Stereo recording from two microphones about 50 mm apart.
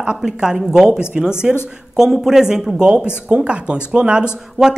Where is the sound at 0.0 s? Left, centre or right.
Centre.